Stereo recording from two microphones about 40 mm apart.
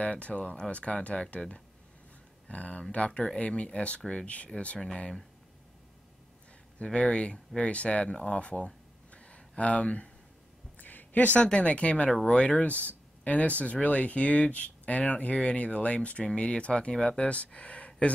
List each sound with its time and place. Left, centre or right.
0.0 s speech: left
2.4 s speech: left
6.8 s speech: left
10.8 s a sound: left
11.4 s speech: left
17.5 s speech: left